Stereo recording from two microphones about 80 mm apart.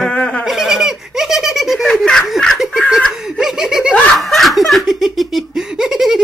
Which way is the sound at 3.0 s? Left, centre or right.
Centre.